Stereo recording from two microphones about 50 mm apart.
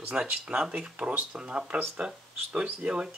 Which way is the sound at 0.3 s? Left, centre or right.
Right.